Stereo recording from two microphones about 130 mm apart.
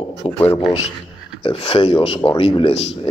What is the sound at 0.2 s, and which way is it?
A man's voice, 45° left (ahead or behind).